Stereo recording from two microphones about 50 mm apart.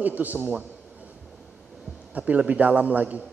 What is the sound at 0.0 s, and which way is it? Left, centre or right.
Speech, right.